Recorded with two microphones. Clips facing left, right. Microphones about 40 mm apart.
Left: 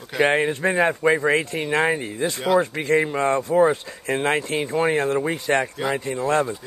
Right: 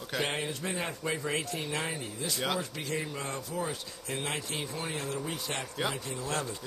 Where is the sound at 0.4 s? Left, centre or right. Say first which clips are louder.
Left 13 dB; left.